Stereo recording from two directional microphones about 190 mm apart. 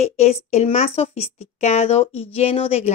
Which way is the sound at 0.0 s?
35° left (ahead or behind).